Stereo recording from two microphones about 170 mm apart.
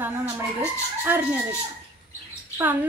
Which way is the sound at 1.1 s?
10° right (ahead or behind).